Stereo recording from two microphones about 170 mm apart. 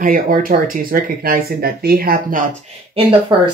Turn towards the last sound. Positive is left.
turn(degrees=-30)  # may be behind; listen again after turning